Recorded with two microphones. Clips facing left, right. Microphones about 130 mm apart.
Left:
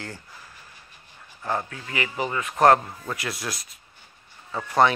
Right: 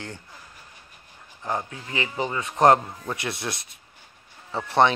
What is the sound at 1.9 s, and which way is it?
Speech, 25° right (ahead or behind).